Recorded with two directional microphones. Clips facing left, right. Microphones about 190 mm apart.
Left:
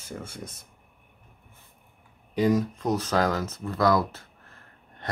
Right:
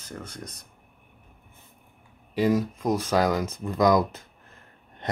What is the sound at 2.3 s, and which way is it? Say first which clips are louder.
Speech: even; 5° right (ahead or behind).